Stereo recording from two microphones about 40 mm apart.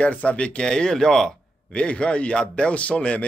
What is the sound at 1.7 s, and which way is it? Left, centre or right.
A man's voice, left.